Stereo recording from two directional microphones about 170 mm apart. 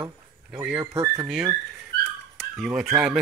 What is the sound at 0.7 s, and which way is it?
Speech, 20° right (ahead or behind).